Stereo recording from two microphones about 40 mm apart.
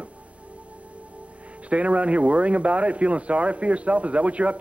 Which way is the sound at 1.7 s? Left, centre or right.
Right.